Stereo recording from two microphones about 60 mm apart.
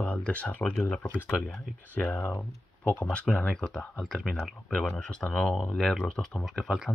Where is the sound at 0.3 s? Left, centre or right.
Left.